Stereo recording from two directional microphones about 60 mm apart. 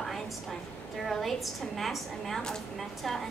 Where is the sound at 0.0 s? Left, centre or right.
Centre.